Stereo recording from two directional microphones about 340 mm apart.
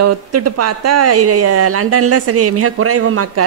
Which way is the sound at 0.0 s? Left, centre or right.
Right.